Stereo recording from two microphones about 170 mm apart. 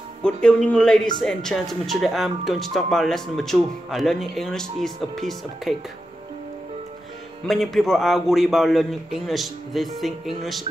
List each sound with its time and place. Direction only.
0.2 s speech: 5° left (ahead or behind)
7.4 s speech: centre (ahead or behind)